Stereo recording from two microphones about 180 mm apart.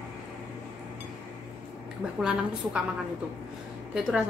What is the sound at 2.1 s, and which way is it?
Speech, 5° right (ahead or behind).